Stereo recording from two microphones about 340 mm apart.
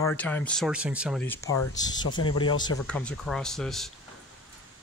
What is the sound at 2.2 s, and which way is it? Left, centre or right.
Speech, left.